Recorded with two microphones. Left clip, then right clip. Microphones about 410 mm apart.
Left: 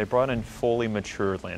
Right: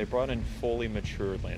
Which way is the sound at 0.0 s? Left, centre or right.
Left.